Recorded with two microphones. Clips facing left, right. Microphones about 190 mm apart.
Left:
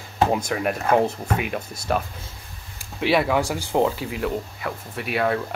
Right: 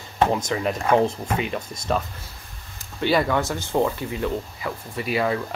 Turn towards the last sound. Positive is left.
turn(degrees=0)  # may be behind; listen again after turning